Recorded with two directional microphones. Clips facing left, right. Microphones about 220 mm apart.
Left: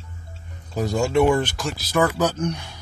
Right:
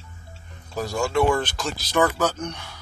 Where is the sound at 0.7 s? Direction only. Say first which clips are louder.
Left 3 dB; 20° left (ahead or behind).